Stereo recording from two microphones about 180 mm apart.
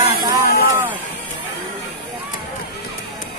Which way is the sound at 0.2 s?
20° right (ahead or behind).